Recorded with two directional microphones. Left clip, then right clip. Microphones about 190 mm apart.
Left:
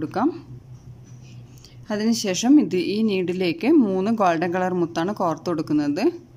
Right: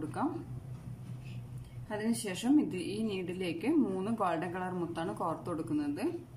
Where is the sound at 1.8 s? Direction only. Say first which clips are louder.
Left 12 dB; 60° left (ahead or behind).